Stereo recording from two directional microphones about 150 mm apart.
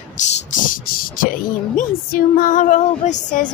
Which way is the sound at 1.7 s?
60° left (ahead or behind).